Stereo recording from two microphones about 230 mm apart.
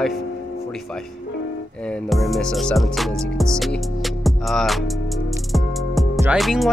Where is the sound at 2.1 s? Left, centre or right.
Centre.